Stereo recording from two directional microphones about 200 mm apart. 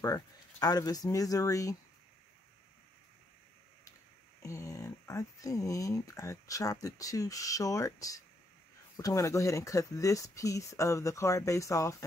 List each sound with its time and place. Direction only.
0.0 s speech: 15° left (ahead or behind)
4.4 s speech: 15° left (ahead or behind)